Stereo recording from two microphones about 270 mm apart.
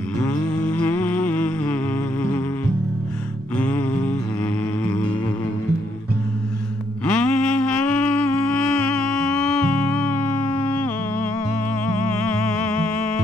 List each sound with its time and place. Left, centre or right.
0.2 s music: centre
3.5 s mantra: centre
4.8 s music: centre
7.1 s music: centre
8.1 s humming: left
8.5 s music: left
8.9 s music: centre